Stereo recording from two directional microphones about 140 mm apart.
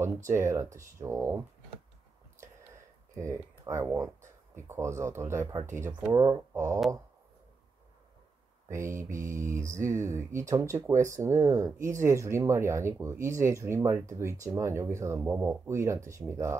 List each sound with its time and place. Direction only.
0.3 s speech: 20° right (ahead or behind)
2.4 s a sound: 20° right (ahead or behind)
4.6 s speech: 20° right (ahead or behind)
8.6 s speech: 20° right (ahead or behind)